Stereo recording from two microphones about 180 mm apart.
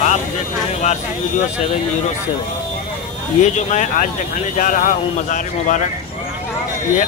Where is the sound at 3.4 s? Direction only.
40° left (ahead or behind).